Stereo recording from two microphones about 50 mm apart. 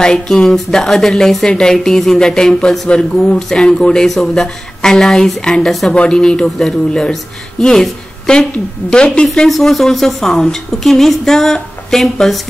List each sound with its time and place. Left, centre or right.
0.0 s a woman's voice: centre
5.9 s a woman's voice: centre
9.5 s a woman's voice: centre